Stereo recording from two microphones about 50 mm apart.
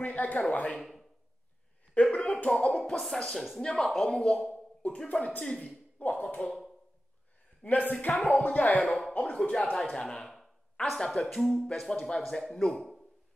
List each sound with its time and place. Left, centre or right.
0.0 s speech: left
0.7 s speech: centre
2.0 s speech: left
2.5 s speech: centre
4.8 s speech: left
7.6 s speech: left
9.8 s speech: centre
10.2 s a sound: centre
11.2 s speech: centre